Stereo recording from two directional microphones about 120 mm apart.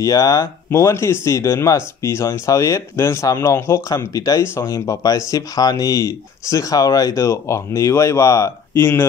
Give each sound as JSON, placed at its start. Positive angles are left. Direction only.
{"t": 0.0, "sound": "speech", "side_deg": 30}